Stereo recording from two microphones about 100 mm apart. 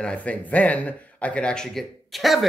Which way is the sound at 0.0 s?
10° left (ahead or behind).